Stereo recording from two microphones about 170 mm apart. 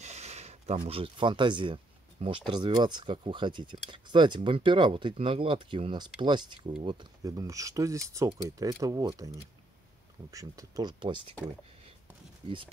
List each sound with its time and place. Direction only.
0.0 s speech: 40° right (ahead or behind)